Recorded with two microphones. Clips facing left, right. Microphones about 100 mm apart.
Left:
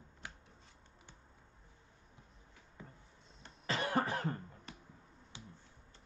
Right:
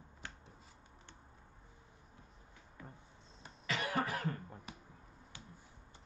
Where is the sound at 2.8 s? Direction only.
20° left (ahead or behind).